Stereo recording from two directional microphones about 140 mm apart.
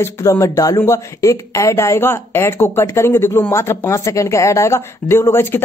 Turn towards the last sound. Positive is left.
turn(degrees=20)  # may be behind; listen again after turning